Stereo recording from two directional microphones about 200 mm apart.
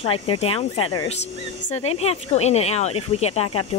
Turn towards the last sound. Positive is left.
turn(degrees=30)  # may be behind; listen again after turning